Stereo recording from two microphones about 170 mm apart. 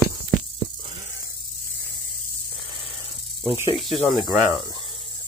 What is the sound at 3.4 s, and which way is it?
Speech, 20° right (ahead or behind).